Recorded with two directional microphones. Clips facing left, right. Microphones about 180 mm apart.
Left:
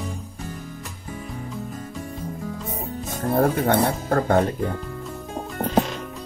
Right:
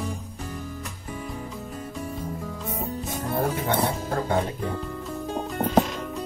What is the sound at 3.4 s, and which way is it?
Speech, 55° left (ahead or behind).